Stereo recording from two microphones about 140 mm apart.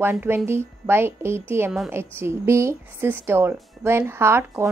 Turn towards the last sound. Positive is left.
turn(degrees=-20)  # may be behind; listen again after turning